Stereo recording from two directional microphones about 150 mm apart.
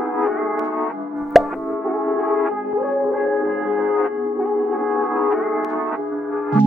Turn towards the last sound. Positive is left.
turn(degrees=0)  # may be behind; listen again after turning